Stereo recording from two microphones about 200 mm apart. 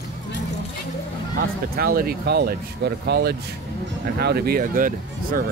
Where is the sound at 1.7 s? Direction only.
50° right (ahead or behind).